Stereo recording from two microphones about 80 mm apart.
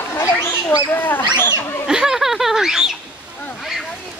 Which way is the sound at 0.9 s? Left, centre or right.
Left.